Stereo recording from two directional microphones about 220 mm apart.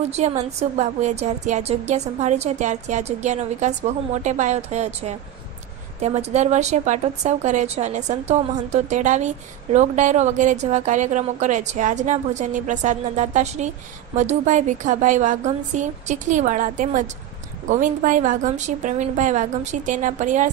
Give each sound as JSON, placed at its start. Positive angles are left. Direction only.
{"t": 0.1, "sound": "speech", "side_deg": -30}